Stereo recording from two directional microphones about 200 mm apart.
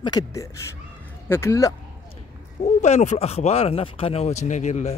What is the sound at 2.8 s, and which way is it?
Speech, 35° left (ahead or behind).